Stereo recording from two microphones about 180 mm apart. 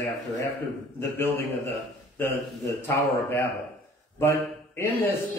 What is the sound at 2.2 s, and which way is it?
A man's voice, 10° left (ahead or behind).